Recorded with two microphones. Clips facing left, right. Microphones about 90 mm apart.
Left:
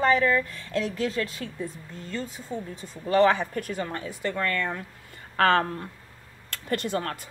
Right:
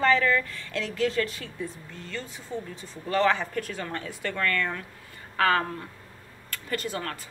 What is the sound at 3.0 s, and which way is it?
A woman's voice, 20° left (ahead or behind).